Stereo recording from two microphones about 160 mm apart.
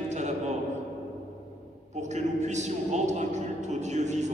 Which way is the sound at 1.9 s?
45° right (ahead or behind).